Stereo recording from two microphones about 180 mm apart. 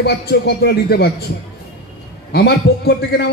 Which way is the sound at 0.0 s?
65° left (ahead or behind).